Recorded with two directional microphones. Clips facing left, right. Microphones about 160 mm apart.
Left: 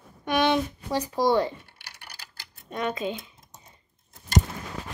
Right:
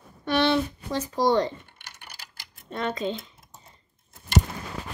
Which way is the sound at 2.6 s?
15° left (ahead or behind).